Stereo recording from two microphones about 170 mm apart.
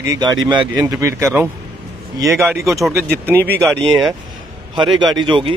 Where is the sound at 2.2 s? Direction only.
Centre (ahead or behind).